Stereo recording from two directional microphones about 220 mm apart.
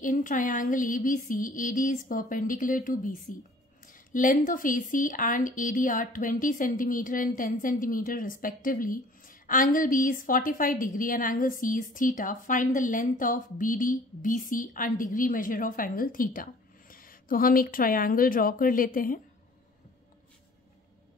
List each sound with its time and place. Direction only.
0.0 s speech: 35° left (ahead or behind)